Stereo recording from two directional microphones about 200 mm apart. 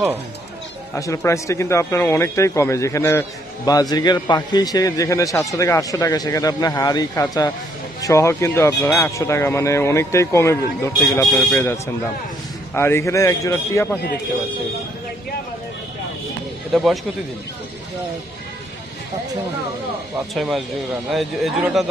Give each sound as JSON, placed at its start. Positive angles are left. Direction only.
{"t": 0.9, "sound": "speech", "side_deg": 15}
{"t": 16.7, "sound": "speech", "side_deg": 0}
{"t": 20.3, "sound": "speech", "side_deg": 0}